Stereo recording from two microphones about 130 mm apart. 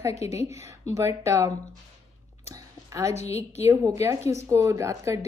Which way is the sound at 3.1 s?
55° left (ahead or behind).